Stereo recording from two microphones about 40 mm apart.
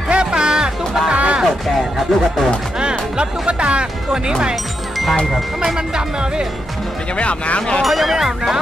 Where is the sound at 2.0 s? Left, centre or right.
Centre.